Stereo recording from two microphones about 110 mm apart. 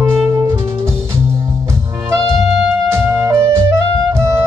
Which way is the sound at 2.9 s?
25° right (ahead or behind).